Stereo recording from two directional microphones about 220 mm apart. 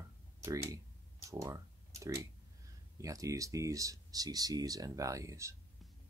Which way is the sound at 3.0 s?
15° right (ahead or behind).